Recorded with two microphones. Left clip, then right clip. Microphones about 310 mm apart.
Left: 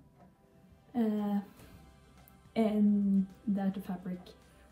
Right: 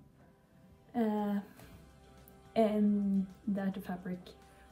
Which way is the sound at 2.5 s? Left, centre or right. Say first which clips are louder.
Right 1 dB; centre.